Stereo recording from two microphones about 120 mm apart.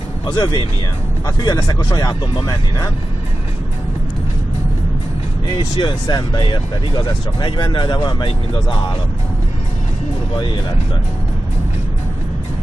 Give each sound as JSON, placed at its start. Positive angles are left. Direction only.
{"t": 0.3, "sound": "speech", "side_deg": 35}
{"t": 5.6, "sound": "speech", "side_deg": 40}
{"t": 10.3, "sound": "speech", "side_deg": 40}